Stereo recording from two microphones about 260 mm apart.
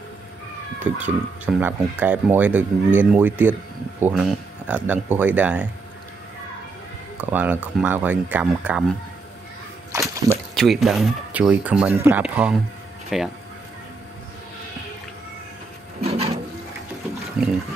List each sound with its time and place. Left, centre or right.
0.8 s speech: centre
7.2 s speech: centre
10.3 s speech: centre
16.0 s wood: right
17.4 s speech: centre